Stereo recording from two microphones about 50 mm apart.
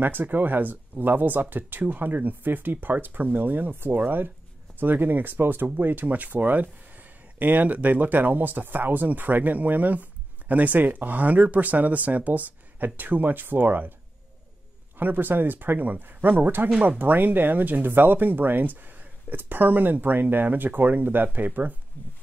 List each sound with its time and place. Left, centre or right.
0.0 s speech: right
15.0 s speech: right